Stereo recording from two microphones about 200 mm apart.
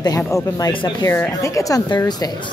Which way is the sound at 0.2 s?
15° left (ahead or behind).